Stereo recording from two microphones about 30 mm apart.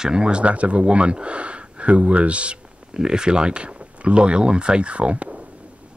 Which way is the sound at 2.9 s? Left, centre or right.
Right.